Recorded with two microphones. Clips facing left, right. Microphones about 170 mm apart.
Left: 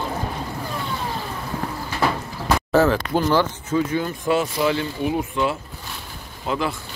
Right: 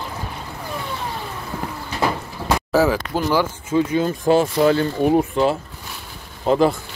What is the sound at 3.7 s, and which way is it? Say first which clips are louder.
Speech: right 3 dB; 25° right (ahead or behind).